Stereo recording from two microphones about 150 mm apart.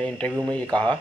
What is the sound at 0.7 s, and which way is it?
Speech, 30° right (ahead or behind).